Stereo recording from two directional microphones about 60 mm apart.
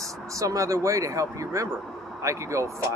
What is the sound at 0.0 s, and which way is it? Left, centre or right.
Speech, right.